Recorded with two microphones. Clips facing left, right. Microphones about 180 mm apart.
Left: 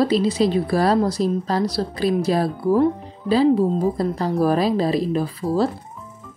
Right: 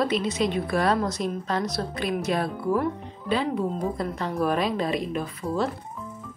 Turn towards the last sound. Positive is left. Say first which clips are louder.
# left 6 dB
turn(degrees=35)  # may be behind; listen again after turning